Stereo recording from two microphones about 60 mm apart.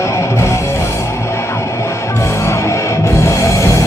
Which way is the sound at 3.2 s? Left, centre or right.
Left.